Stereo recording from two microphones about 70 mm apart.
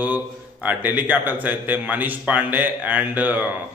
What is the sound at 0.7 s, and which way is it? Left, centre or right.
A man's voice, right.